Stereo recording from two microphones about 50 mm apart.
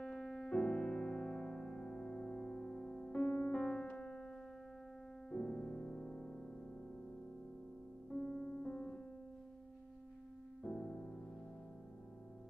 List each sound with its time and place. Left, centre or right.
0.0 s piano: centre
5.3 s music: centre
8.1 s music: left
8.6 s music: centre
10.6 s music: centre